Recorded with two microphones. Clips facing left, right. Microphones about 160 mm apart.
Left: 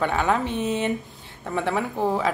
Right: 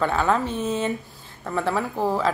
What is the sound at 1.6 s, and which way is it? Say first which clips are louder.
Speech: even; 15° left (ahead or behind).